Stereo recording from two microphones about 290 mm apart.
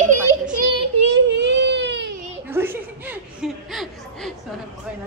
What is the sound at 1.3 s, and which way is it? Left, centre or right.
Baby cry, right.